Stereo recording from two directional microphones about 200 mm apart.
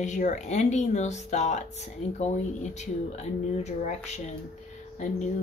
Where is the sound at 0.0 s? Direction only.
35° left (ahead or behind).